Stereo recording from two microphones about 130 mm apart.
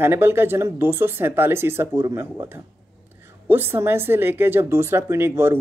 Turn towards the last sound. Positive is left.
turn(degrees=-20)  # may be behind; listen again after turning